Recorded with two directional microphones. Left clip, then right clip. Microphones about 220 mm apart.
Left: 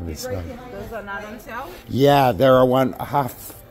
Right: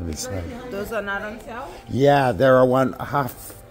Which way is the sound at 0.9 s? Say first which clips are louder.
Right 6 dB; 65° right (ahead or behind).